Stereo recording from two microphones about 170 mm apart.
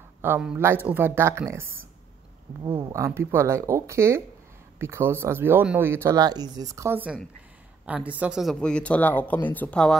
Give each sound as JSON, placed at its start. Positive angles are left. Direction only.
{"t": 0.2, "sound": "speech", "side_deg": -10}
{"t": 2.6, "sound": "a man's voice", "side_deg": -25}